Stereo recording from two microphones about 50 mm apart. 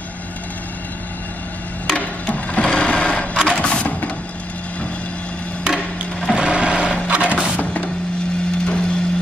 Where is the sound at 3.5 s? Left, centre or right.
Centre.